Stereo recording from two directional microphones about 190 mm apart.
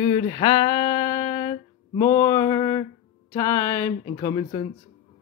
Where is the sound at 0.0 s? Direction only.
25° left (ahead or behind).